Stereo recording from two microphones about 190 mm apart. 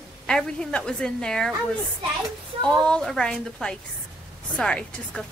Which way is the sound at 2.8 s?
5° left (ahead or behind).